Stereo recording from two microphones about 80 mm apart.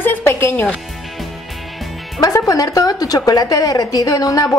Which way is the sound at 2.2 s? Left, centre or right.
Left.